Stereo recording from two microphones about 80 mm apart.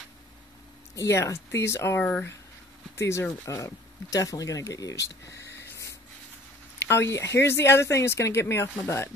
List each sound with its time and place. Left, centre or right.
0.9 s speech: left